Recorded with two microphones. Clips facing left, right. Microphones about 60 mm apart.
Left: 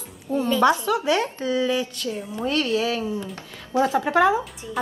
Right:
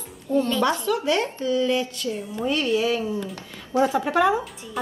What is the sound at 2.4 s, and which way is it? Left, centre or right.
Speech, centre.